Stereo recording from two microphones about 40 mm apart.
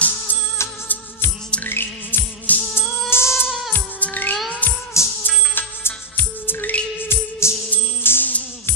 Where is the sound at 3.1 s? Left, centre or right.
Left.